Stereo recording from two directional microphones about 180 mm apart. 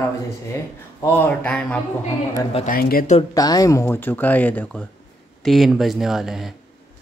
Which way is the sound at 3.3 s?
20° left (ahead or behind).